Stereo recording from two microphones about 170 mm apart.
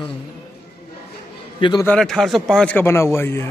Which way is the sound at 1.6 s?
25° left (ahead or behind).